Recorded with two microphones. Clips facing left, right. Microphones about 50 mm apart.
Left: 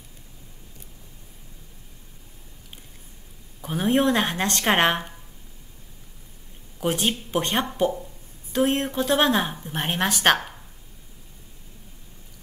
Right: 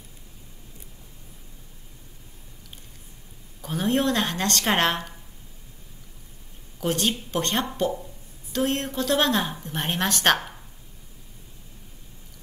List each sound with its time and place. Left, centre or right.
3.6 s a woman's voice: centre
6.8 s a woman's voice: centre